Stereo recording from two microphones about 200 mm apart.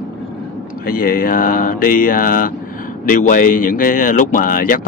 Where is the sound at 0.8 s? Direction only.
45° left (ahead or behind).